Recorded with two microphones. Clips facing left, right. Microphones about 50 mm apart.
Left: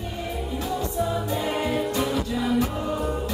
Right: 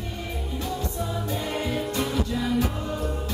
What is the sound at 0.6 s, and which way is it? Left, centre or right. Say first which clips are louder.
Music: left 5 dB; centre.